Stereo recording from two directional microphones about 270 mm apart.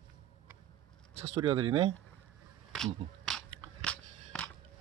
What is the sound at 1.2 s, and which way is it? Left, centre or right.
Speech, right.